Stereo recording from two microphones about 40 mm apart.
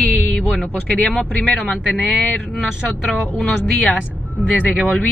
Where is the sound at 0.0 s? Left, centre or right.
Left.